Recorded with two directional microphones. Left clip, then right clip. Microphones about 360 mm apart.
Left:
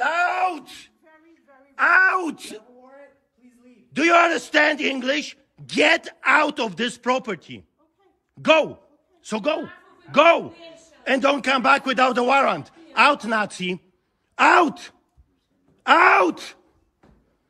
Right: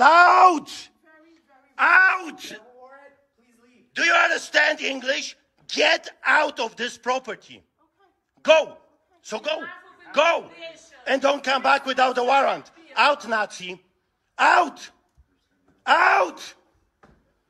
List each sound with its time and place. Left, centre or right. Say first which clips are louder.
0.1 s groan: right 8 dB; right
1.8 s wail: even; centre
2.1 s a sound: left 6 dB; centre
3.9 s speech: left 2 dB; centre